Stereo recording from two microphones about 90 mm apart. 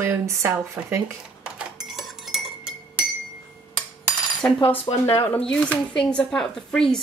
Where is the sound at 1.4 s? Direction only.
10° right (ahead or behind).